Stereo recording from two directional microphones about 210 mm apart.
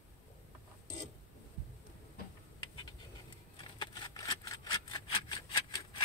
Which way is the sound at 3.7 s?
20° left (ahead or behind).